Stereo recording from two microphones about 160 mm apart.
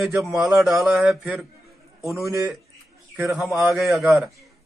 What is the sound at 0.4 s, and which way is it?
A man's voice, centre (ahead or behind).